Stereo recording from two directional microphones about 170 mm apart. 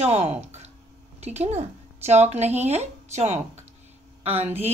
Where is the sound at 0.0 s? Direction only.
40° right (ahead or behind).